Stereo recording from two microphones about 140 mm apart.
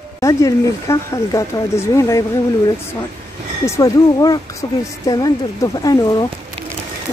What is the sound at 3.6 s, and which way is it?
A woman's voice, 20° left (ahead or behind).